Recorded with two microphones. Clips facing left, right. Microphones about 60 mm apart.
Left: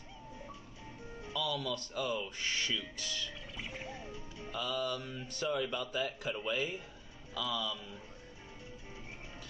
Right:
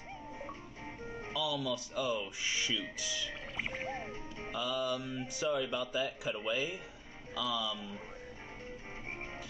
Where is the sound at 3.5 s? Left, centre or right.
Right.